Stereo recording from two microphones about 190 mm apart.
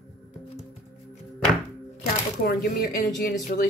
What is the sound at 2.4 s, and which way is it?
Speech, 55° left (ahead or behind).